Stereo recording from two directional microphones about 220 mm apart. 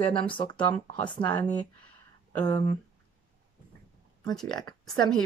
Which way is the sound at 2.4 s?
20° left (ahead or behind).